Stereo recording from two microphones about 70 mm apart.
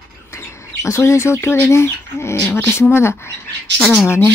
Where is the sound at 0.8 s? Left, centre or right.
Left.